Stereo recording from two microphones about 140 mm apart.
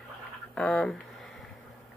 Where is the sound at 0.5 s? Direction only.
5° left (ahead or behind).